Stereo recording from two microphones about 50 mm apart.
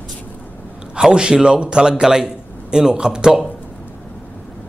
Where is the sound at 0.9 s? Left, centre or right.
Centre.